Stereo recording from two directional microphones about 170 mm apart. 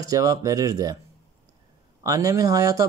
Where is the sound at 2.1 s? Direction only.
20° right (ahead or behind).